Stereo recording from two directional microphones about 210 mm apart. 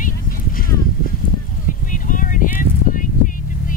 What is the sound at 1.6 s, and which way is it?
Vehicle, 40° left (ahead or behind).